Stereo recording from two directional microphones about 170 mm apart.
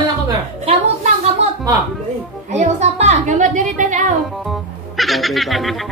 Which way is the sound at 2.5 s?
40° right (ahead or behind).